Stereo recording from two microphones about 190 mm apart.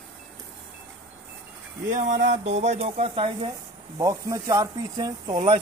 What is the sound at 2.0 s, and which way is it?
Speech, 40° right (ahead or behind).